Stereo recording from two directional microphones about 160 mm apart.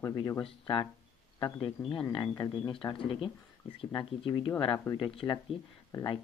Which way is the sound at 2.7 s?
25° left (ahead or behind).